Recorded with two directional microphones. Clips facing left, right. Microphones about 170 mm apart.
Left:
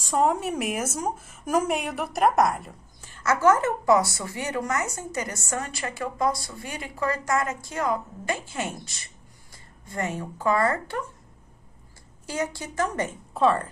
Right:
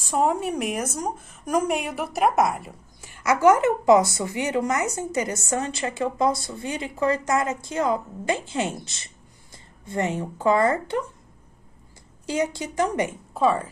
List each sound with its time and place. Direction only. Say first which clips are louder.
0.0 s a woman's voice: right 1 dB; centre (ahead or behind); by 11.0 s 20° right (ahead or behind)
12.3 s a woman's voice: right 4 dB; 20° right (ahead or behind)
13.3 s a woman's voice: left 1 dB; centre (ahead or behind)